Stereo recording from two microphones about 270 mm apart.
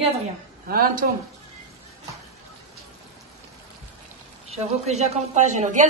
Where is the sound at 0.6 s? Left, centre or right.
Right.